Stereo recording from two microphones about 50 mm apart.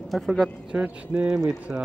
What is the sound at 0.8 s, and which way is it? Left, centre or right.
Speech, right.